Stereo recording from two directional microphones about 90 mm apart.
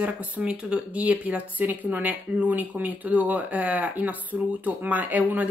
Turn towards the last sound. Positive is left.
turn(degrees=-20)  # may be behind; listen again after turning